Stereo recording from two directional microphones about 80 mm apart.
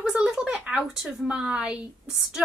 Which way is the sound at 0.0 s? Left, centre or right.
Centre.